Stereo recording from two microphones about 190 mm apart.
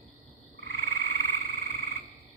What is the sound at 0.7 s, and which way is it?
Frog, 65° right (ahead or behind).